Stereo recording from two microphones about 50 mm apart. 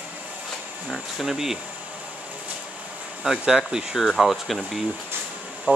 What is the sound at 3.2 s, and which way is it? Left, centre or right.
Speech, centre.